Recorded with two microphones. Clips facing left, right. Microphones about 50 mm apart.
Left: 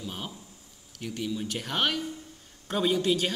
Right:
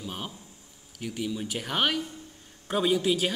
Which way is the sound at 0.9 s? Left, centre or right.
Centre.